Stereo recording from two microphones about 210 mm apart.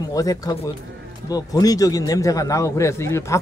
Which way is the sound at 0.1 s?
15° left (ahead or behind).